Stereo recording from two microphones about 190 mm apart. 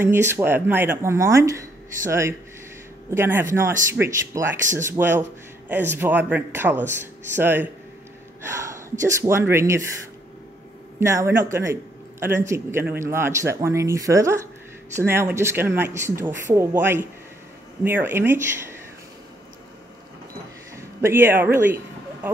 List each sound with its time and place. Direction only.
0.0 s speech: 10° right (ahead or behind)
11.0 s speech: 15° right (ahead or behind)
20.7 s a sound: 10° right (ahead or behind)